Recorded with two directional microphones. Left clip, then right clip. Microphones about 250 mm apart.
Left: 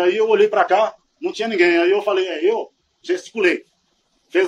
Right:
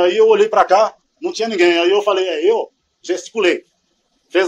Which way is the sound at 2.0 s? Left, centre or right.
Centre.